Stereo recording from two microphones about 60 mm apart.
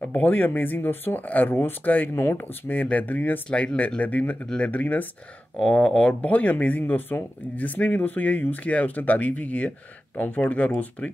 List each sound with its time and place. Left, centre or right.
0.1 s speech: left
3.4 s speech: centre
5.6 s speech: centre
6.8 s speech: left